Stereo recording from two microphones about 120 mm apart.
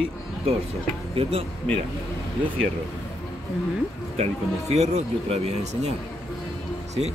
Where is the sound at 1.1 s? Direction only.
55° right (ahead or behind).